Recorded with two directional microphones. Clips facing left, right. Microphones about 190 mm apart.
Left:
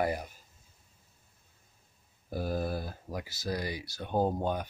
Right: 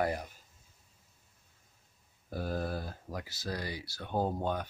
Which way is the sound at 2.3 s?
10° left (ahead or behind).